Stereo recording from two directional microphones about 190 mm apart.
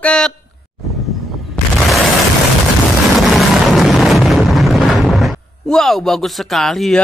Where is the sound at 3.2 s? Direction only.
Centre (ahead or behind).